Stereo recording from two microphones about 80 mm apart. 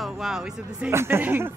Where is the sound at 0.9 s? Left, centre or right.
Right.